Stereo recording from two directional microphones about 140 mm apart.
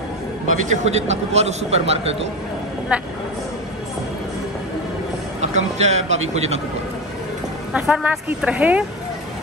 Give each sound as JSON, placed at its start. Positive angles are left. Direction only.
{"t": 0.7, "sound": "a man's voice", "side_deg": -50}
{"t": 2.9, "sound": "speech", "side_deg": -10}
{"t": 5.4, "sound": "a man's voice", "side_deg": -55}
{"t": 7.7, "sound": "speech", "side_deg": -10}